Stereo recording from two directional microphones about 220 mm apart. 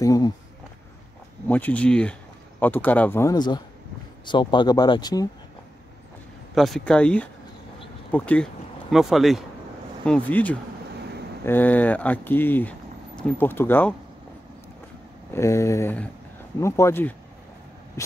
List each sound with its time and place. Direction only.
0.0 s a sound: 15° left (ahead or behind)
1.5 s speech: 5° left (ahead or behind)
6.5 s speech: centre (ahead or behind)
15.3 s speech: 15° left (ahead or behind)